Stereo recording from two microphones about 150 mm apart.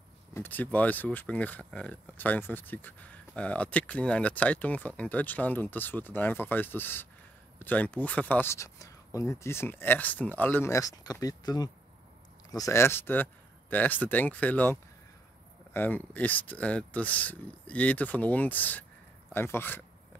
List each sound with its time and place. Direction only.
0.3 s speech: 10° left (ahead or behind)